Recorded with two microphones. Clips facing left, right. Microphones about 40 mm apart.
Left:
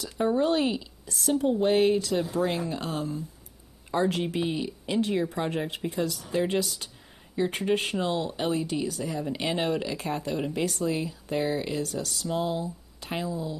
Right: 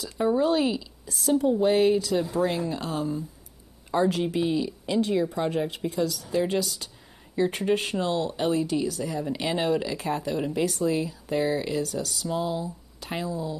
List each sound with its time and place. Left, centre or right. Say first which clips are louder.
0.4 s speech: right 1 dB; centre
4.1 s speech: right 3 dB; centre
7.3 s speech: right 2 dB; centre